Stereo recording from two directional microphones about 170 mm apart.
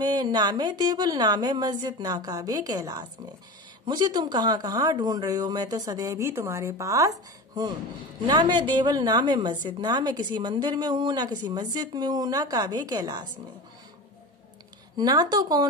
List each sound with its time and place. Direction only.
0.0 s a woman's voice: 25° right (ahead or behind)
15.0 s a woman's voice: 25° right (ahead or behind)